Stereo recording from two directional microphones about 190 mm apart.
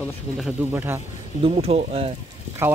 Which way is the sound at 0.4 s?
10° right (ahead or behind).